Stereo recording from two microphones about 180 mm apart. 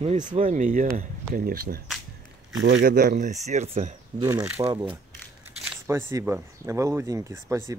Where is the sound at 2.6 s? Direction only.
70° right (ahead or behind).